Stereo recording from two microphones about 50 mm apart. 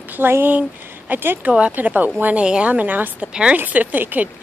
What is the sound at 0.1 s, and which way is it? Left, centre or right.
Speech, right.